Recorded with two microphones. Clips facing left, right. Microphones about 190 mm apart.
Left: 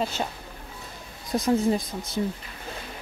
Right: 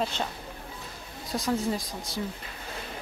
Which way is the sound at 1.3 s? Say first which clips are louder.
Left 6 dB; 20° left (ahead or behind).